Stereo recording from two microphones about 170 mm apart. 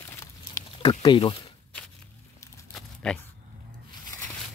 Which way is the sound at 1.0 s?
30° left (ahead or behind).